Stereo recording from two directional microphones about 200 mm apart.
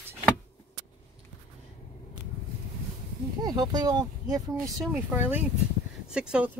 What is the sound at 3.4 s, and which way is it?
Speech, 20° right (ahead or behind).